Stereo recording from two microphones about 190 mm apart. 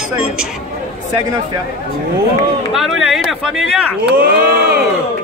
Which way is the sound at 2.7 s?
Centre (ahead or behind).